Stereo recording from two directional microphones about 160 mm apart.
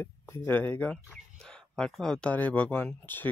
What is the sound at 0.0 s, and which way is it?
Speech, 10° left (ahead or behind).